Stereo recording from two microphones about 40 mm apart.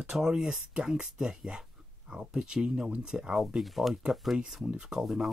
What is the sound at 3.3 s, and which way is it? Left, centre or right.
Speech, centre.